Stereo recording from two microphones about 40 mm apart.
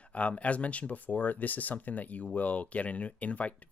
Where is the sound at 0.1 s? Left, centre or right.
Left.